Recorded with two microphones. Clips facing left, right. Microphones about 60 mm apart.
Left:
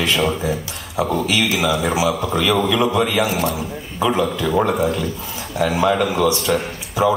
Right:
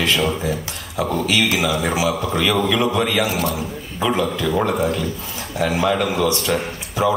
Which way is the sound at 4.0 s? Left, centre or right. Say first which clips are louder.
Left 1 dB; centre.